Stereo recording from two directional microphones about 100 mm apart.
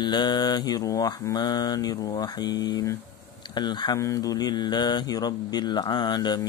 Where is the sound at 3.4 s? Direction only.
50° left (ahead or behind).